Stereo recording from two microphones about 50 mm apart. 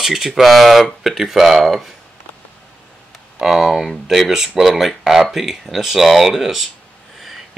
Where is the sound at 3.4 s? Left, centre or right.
Centre.